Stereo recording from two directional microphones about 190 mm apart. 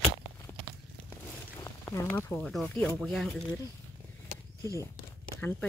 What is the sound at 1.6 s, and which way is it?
Speech, 15° left (ahead or behind).